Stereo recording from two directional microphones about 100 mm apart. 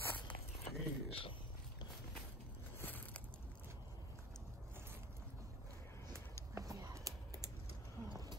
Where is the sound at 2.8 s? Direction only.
20° left (ahead or behind).